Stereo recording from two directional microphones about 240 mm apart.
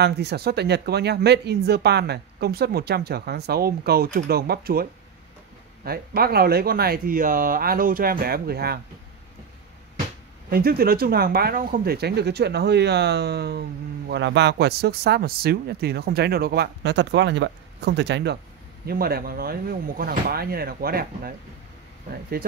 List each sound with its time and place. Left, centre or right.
0.0 s speech: right
5.9 s speech: right
10.5 s speech: right